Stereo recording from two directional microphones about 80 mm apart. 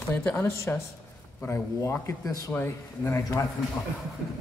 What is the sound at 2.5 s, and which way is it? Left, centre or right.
Speech, left.